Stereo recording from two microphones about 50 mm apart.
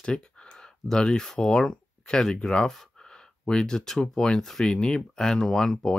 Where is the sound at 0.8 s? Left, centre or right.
Centre.